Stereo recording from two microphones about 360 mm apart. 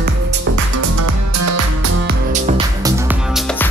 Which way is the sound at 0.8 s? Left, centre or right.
Right.